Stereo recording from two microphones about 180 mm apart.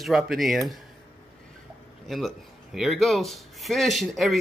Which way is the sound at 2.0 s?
Centre (ahead or behind).